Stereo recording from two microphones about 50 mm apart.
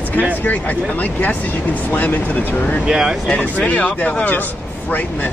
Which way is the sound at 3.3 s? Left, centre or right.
Left.